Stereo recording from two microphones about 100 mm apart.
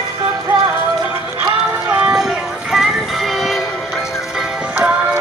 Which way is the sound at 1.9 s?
15° right (ahead or behind).